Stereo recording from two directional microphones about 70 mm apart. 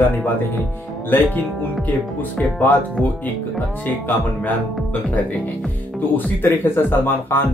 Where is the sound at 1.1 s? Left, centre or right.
Left.